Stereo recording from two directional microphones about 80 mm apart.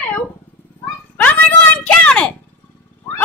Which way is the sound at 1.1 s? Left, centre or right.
Centre.